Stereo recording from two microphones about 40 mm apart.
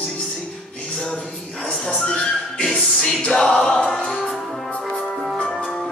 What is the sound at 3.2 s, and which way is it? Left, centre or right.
Music, left.